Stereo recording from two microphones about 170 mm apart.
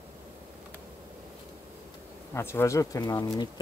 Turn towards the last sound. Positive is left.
turn(degrees=20)  # may be behind; listen again after turning